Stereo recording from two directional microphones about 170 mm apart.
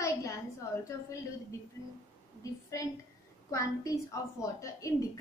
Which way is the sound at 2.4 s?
20° left (ahead or behind).